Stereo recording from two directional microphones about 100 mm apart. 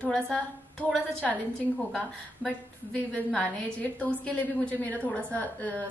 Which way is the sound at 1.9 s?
10° left (ahead or behind).